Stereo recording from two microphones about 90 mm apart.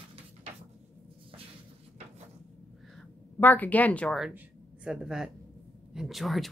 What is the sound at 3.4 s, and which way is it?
Speech, 20° left (ahead or behind).